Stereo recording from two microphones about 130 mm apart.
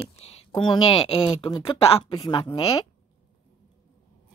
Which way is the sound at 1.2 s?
45° left (ahead or behind).